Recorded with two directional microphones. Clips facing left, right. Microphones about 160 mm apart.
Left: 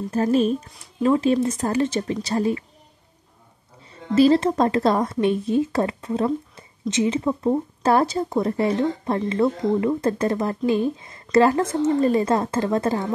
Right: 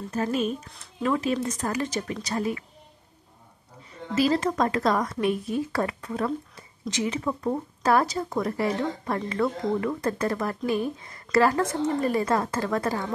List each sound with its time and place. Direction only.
0.1 s speech: 35° left (ahead or behind)
4.1 s speech: 30° left (ahead or behind)